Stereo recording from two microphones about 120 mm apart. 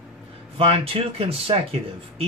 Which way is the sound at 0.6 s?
50° right (ahead or behind).